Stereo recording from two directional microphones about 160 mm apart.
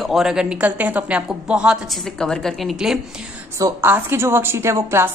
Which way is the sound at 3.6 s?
15° right (ahead or behind).